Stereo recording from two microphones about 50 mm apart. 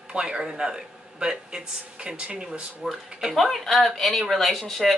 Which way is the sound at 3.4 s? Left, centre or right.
Centre.